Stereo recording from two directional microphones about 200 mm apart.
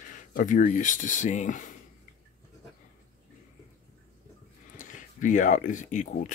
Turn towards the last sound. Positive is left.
turn(degrees=40)  # may be behind; listen again after turning